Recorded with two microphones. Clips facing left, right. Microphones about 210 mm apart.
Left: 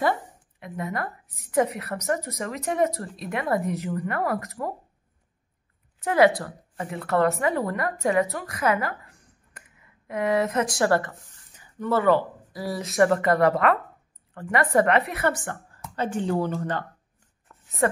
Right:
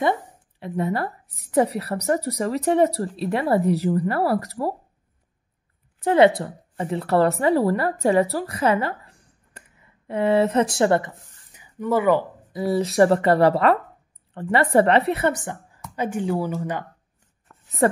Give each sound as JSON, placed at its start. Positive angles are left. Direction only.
{"t": 0.6, "sound": "a woman's voice", "side_deg": -35}
{"t": 5.9, "sound": "a woman's voice", "side_deg": -30}
{"t": 10.8, "sound": "speech", "side_deg": -20}
{"t": 12.8, "sound": "a woman's voice", "side_deg": -35}
{"t": 15.2, "sound": "a woman's voice", "side_deg": -15}